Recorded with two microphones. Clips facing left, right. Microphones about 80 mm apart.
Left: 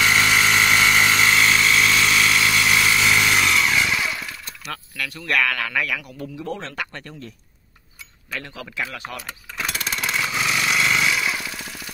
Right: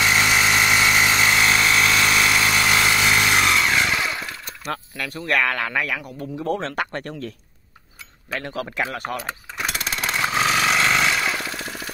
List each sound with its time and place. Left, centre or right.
0.0 s a sound: centre; by 3.6 s right
3.6 s vehicle: right
5.2 s speech: right
6.0 s a man's voice: right
8.3 s a man's voice: right
9.7 s jackhammer: right
10.3 s a sound: right